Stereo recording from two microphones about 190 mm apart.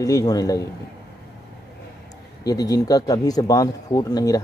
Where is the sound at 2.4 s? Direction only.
20° left (ahead or behind).